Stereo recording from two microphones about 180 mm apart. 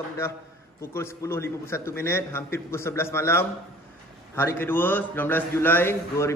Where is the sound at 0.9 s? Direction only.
15° left (ahead or behind).